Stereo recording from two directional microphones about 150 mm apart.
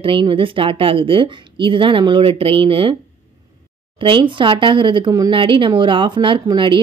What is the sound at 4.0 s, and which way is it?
Speech, 35° right (ahead or behind).